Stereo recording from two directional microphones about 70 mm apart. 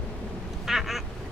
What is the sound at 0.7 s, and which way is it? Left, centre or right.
Quack, centre.